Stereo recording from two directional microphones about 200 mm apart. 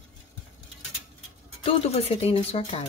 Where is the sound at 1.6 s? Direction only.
30° left (ahead or behind).